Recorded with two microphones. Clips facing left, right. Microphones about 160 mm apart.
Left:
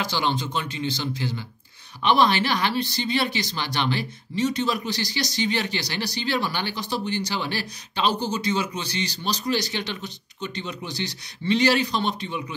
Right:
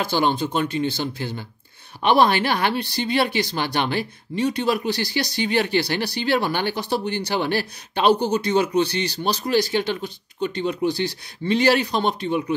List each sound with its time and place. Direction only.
0.0 s speech: 50° right (ahead or behind)